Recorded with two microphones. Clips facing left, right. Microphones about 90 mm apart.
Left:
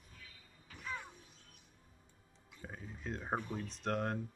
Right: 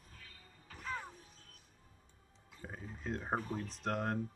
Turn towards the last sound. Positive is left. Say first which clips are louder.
# even
turn(degrees=0)  # may be behind; listen again after turning